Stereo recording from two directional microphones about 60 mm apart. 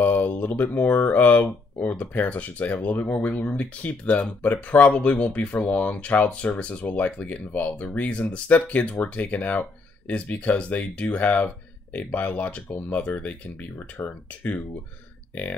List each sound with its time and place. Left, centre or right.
0.0 s speech: left